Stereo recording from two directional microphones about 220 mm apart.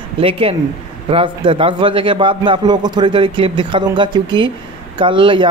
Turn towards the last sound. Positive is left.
turn(degrees=-20)  # may be behind; listen again after turning